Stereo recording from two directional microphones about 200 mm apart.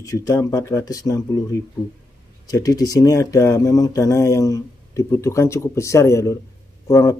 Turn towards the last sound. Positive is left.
turn(degrees=15)  # may be behind; listen again after turning